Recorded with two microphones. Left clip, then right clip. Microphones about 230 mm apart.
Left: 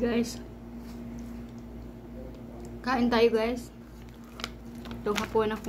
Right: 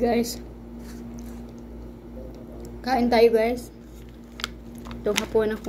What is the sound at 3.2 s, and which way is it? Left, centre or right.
Speech, centre.